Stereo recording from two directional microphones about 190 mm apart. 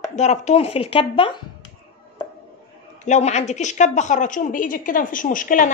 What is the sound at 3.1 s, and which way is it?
A woman's voice, 35° left (ahead or behind).